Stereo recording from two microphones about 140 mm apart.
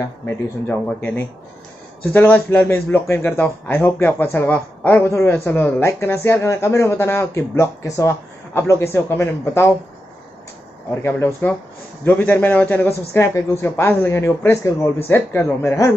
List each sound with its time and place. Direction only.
0.0 s a man's voice: 15° left (ahead or behind)
11.0 s a man's voice: 15° left (ahead or behind)